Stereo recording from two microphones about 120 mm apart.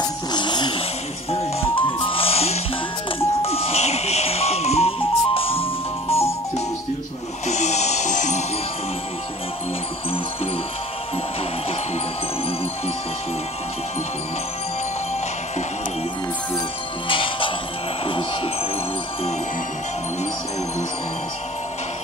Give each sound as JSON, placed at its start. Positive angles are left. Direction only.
{"t": 0.3, "sound": "music", "side_deg": 40}
{"t": 1.3, "sound": "music", "side_deg": 50}
{"t": 7.4, "sound": "music", "side_deg": 70}
{"t": 17.1, "sound": "music", "side_deg": 45}